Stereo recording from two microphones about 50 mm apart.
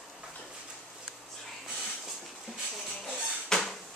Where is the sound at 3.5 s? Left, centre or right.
Centre.